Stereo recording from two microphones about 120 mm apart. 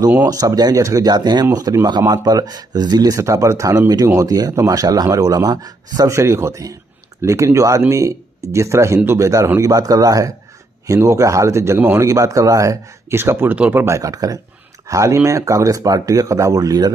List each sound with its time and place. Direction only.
0.2 s speech: 30° right (ahead or behind)